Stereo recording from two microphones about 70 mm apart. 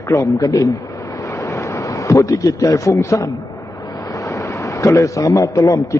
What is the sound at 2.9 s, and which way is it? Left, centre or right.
A man's voice, left.